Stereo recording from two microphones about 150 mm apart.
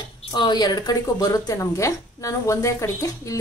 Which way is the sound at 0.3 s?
30° left (ahead or behind).